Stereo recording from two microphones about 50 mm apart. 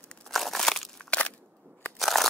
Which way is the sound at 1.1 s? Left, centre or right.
Left.